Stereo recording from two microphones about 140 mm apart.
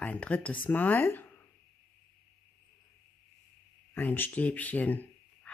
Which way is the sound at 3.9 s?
15° left (ahead or behind).